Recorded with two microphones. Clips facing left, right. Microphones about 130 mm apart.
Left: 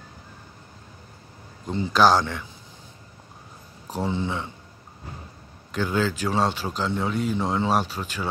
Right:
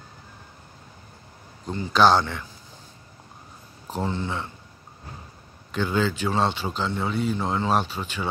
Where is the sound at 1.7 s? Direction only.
20° left (ahead or behind).